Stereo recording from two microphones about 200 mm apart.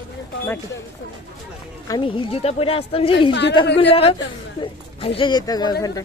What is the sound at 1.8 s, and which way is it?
A woman's voice, 25° left (ahead or behind).